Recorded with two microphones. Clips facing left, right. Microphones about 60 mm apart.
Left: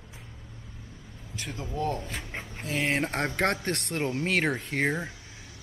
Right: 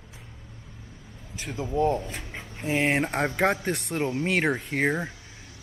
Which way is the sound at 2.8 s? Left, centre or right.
Centre.